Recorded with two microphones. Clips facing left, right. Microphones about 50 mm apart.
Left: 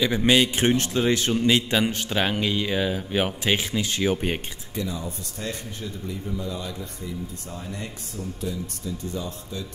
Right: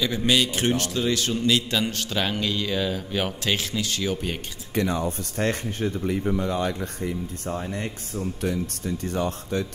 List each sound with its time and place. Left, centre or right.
0.0 s a man's voice: left
4.7 s speech: right
8.4 s a man's voice: right